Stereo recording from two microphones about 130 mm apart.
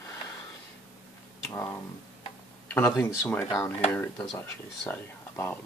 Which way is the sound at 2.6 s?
15° left (ahead or behind).